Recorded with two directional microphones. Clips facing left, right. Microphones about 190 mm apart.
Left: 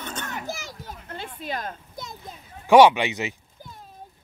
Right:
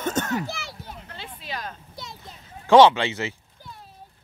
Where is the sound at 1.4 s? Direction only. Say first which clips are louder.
Left 3 dB; 50° left (ahead or behind).